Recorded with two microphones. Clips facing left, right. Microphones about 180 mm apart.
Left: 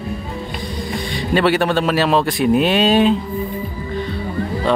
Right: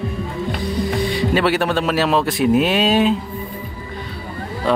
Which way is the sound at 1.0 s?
5° right (ahead or behind).